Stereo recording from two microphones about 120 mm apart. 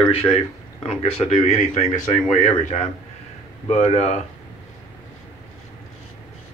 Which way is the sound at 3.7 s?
60° left (ahead or behind).